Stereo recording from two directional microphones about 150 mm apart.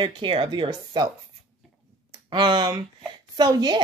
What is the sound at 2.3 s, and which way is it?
Speech, 30° right (ahead or behind).